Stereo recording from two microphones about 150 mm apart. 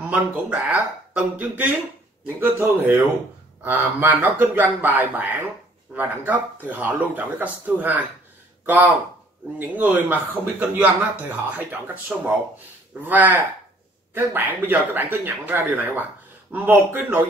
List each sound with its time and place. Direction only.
0.1 s speech: 5° right (ahead or behind)